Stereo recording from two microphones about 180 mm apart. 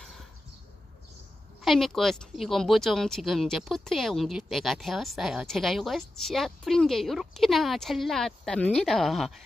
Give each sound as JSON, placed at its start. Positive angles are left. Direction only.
{"t": 1.6, "sound": "speech", "side_deg": 0}